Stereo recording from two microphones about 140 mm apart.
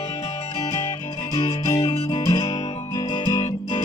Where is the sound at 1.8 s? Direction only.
45° left (ahead or behind).